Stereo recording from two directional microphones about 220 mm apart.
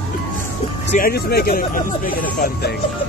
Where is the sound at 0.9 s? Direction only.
45° left (ahead or behind).